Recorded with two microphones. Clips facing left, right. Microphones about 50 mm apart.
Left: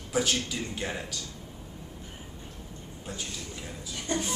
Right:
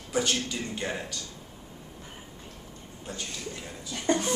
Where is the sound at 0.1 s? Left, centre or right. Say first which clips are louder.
Even; centre.